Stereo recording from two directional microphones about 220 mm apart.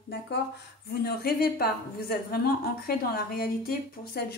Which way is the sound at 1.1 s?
45° left (ahead or behind).